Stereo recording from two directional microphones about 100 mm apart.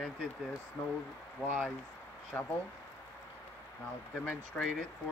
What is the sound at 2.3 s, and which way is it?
Speech, 15° left (ahead or behind).